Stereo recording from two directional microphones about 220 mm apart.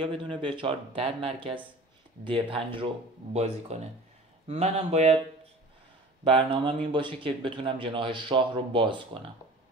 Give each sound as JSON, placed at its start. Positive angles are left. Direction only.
{"t": 0.0, "sound": "speech", "side_deg": -20}